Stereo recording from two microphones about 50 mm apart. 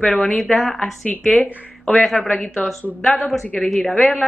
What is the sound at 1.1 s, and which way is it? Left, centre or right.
Speech, left.